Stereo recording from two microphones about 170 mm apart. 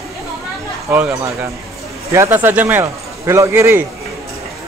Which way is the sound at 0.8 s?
15° right (ahead or behind).